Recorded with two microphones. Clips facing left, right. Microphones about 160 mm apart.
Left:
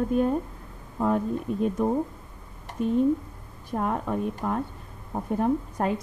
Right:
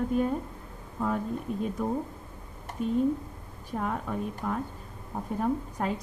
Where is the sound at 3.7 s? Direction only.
40° left (ahead or behind).